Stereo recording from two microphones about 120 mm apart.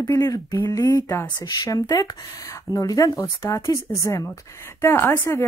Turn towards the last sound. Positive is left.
turn(degrees=20)  # may be behind; listen again after turning